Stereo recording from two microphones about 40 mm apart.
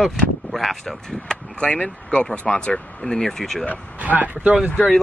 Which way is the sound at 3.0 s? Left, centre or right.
Centre.